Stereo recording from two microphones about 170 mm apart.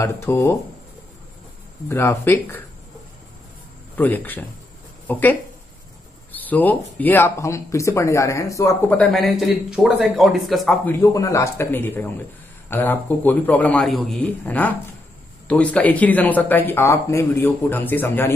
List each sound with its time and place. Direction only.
0.0 s speech: 15° left (ahead or behind)
1.9 s speech: 15° left (ahead or behind)
3.9 s speech: 10° left (ahead or behind)
8.9 s a man's voice: centre (ahead or behind)
10.9 s speech: 15° left (ahead or behind)